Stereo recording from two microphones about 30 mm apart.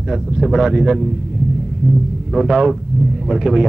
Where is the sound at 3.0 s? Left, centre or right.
Centre.